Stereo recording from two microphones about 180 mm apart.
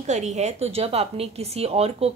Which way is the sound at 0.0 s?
40° right (ahead or behind).